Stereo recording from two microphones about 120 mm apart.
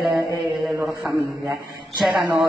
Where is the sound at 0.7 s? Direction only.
20° right (ahead or behind).